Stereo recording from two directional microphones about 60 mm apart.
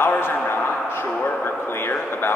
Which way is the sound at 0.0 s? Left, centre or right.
Left.